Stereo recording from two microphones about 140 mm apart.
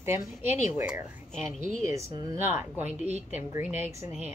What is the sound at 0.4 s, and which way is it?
A woman's voice, 15° right (ahead or behind).